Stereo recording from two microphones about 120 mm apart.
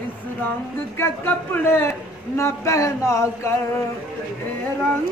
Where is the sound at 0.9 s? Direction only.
20° left (ahead or behind).